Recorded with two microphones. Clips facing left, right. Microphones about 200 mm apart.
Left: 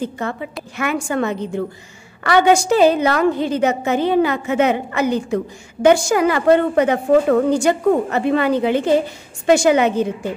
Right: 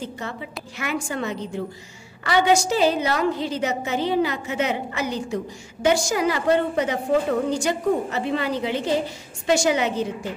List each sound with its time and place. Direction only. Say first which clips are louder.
0.0 s a woman's voice: left 7 dB; 55° left (ahead or behind)